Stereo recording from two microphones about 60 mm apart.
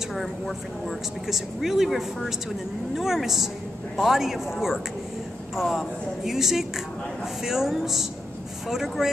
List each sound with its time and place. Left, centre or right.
0.1 s speech: centre